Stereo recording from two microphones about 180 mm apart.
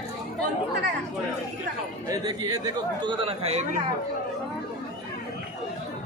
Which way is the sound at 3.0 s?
35° right (ahead or behind).